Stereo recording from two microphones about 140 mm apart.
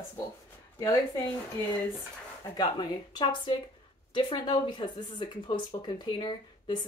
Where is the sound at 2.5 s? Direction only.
30° left (ahead or behind).